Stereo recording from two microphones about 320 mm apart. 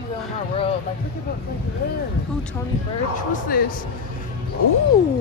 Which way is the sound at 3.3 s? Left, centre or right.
Left.